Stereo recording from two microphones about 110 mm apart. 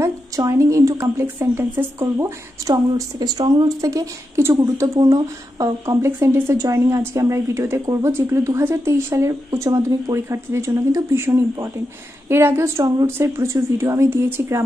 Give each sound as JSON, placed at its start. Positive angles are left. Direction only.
{"t": 0.5, "sound": "a woman's voice", "side_deg": -30}